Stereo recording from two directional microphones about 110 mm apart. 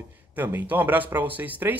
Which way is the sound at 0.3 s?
15° right (ahead or behind).